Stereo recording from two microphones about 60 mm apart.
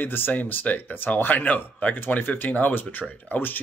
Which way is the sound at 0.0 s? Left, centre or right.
Left.